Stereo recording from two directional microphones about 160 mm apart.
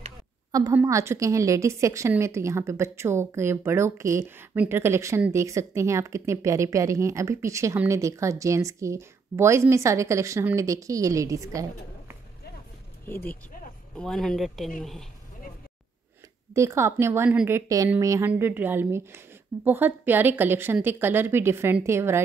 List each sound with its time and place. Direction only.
0.5 s a woman's voice: 20° right (ahead or behind)
13.0 s speech: 10° left (ahead or behind)
16.5 s a woman's voice: 15° right (ahead or behind)